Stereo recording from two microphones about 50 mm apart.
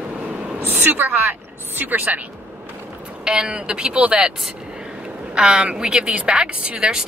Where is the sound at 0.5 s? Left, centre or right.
Right.